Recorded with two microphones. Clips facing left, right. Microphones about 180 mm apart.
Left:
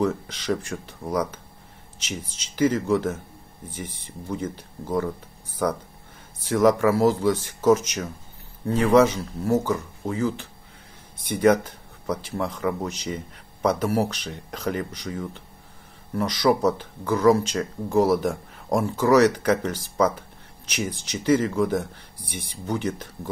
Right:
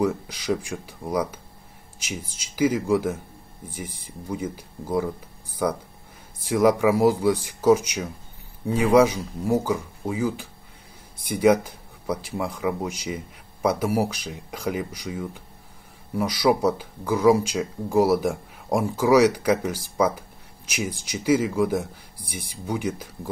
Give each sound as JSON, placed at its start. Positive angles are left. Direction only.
{"t": 0.0, "sound": "speech", "side_deg": -10}